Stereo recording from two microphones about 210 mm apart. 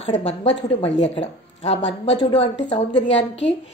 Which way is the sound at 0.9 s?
55° left (ahead or behind).